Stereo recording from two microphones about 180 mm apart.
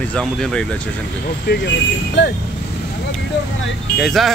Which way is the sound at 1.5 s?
70° left (ahead or behind).